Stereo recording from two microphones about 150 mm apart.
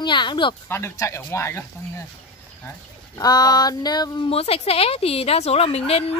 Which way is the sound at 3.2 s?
25° left (ahead or behind).